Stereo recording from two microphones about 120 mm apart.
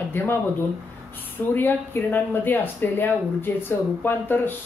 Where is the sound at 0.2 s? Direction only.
15° left (ahead or behind).